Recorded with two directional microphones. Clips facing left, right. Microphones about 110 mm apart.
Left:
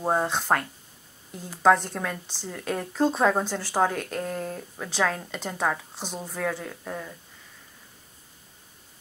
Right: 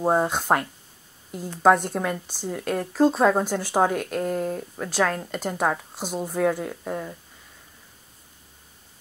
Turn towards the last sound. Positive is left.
turn(degrees=-15)  # may be behind; listen again after turning